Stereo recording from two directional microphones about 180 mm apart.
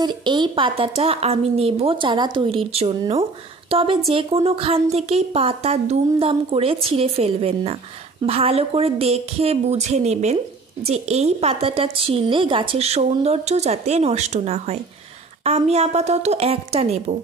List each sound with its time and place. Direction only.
0.0 s a woman's voice: 25° right (ahead or behind)